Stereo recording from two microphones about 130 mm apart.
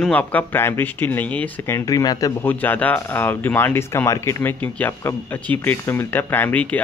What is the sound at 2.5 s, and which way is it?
Speech, 15° left (ahead or behind).